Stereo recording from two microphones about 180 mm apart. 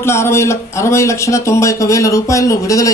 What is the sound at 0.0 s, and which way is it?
A man's voice, 15° left (ahead or behind).